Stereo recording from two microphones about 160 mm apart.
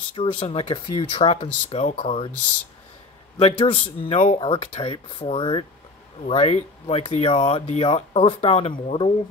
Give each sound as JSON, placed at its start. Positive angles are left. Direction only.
{"t": 0.1, "sound": "speech", "side_deg": 35}
{"t": 3.3, "sound": "speech", "side_deg": 35}